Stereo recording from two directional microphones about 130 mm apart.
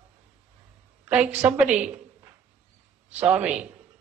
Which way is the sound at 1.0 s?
10° right (ahead or behind).